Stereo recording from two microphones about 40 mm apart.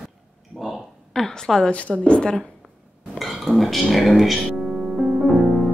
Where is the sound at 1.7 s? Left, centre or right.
Left.